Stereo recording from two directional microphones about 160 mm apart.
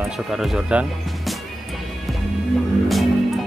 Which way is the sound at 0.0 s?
Centre (ahead or behind).